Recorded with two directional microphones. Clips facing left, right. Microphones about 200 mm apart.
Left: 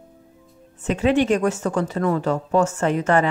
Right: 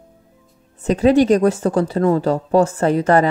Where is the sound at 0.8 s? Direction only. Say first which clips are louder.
Right 5 dB; 35° right (ahead or behind).